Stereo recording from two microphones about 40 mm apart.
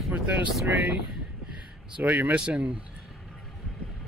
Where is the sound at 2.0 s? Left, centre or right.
Right.